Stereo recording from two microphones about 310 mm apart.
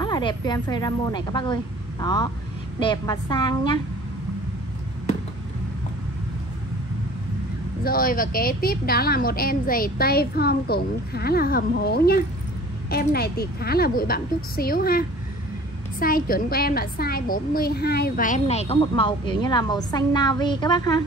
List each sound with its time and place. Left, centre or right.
0.0 s a woman's voice: centre
7.8 s a woman's voice: left